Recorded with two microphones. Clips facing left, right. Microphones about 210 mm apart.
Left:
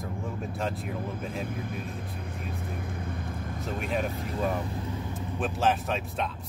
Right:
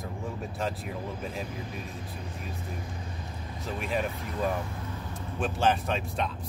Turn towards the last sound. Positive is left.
turn(degrees=0)  # may be behind; listen again after turning